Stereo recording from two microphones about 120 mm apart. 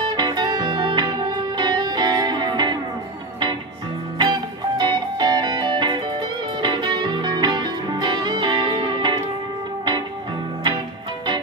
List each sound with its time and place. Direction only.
0.1 s music: 35° right (ahead or behind)
4.2 s music: 40° right (ahead or behind)